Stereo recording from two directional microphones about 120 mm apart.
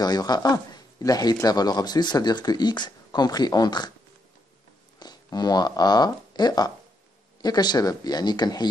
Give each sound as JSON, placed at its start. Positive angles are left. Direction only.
{"t": 0.0, "sound": "speech", "side_deg": 35}
{"t": 4.9, "sound": "speech", "side_deg": 35}